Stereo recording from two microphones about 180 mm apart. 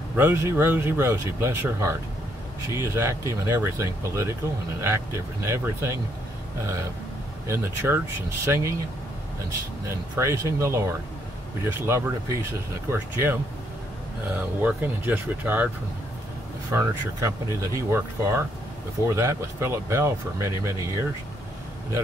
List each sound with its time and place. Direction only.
0.1 s speech: 15° right (ahead or behind)
9.8 s speech: 15° right (ahead or behind)
16.7 s speech: 15° right (ahead or behind)